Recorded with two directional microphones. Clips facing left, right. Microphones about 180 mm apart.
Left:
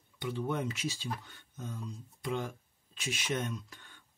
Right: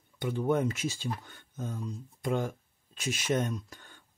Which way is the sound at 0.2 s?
45° right (ahead or behind).